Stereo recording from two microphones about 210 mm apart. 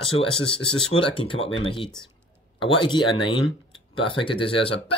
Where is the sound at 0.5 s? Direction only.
25° left (ahead or behind).